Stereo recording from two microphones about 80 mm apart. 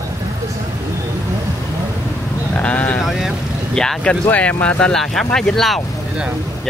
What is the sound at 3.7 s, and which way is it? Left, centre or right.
Speech, centre.